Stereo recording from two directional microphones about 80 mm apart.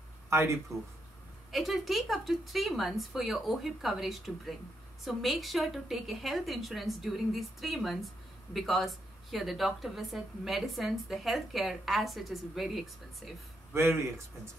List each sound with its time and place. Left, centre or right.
0.3 s speech: right
1.5 s a woman's voice: centre
13.7 s a man's voice: right